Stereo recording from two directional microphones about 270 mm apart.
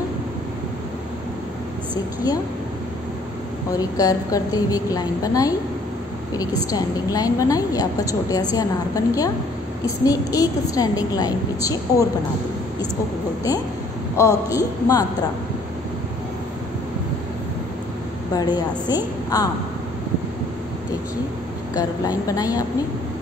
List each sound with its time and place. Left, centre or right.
3.7 s a woman's voice: centre
6.7 s a woman's voice: centre
14.1 s a woman's voice: centre
18.3 s a woman's voice: centre
22.3 s a woman's voice: centre